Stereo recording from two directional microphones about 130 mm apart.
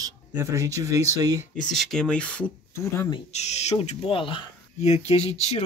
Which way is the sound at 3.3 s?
60° left (ahead or behind).